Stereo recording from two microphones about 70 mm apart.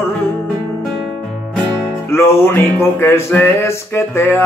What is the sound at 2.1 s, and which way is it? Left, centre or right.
Music, left.